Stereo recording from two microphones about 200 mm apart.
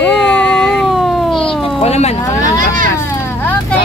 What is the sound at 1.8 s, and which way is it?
Speech, 30° left (ahead or behind).